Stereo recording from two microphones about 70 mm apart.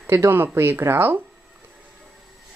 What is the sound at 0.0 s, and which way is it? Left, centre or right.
Speech, right.